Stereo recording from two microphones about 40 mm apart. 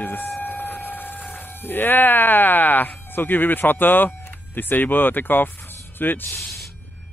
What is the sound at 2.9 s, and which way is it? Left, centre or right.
Speech, left.